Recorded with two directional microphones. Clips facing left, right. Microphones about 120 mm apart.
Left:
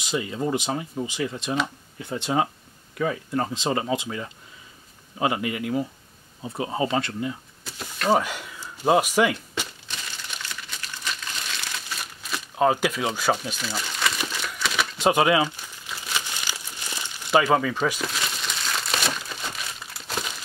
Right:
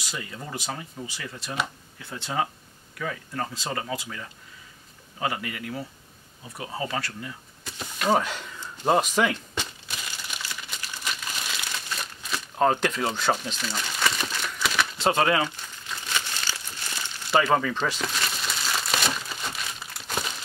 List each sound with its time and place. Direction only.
0.0 s speech: 20° left (ahead or behind)
7.6 s a sound: 5° left (ahead or behind)
10.3 s crumpling: 5° right (ahead or behind)
11.5 s crumpling: centre (ahead or behind)